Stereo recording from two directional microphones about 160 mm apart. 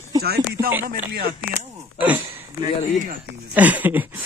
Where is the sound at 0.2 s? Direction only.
80° right.